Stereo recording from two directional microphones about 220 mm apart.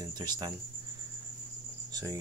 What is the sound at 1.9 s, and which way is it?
Cricket, 15° right (ahead or behind).